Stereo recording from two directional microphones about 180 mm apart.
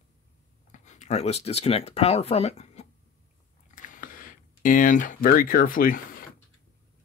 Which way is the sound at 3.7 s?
45° left (ahead or behind).